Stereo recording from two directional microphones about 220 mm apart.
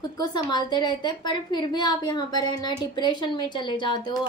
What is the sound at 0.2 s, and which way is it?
Speech, 20° left (ahead or behind).